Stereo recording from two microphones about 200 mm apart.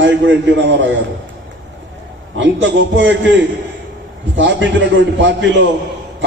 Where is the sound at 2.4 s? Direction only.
65° right (ahead or behind).